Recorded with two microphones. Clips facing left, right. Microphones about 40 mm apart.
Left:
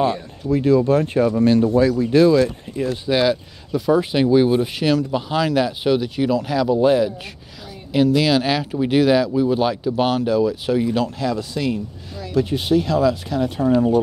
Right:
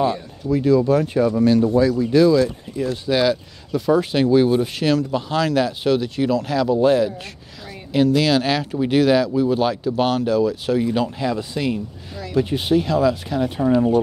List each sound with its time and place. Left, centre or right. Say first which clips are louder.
0.0 s speech: left 1 dB; left
2.8 s speech: even; centre
11.0 s speech: even; centre